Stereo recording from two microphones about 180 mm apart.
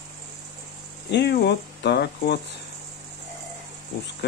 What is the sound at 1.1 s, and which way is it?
Speech, 65° left (ahead or behind).